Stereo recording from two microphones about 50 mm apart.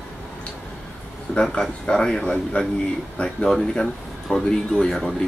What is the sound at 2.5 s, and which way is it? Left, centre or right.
Speech, left.